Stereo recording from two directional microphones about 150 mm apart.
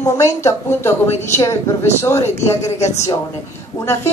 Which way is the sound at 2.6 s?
50° left (ahead or behind).